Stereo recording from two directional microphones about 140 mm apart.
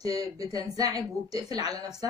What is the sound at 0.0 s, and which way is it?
Speech, 25° right (ahead or behind).